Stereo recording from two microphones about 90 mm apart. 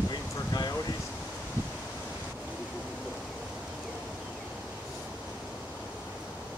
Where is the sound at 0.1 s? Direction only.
45° left (ahead or behind).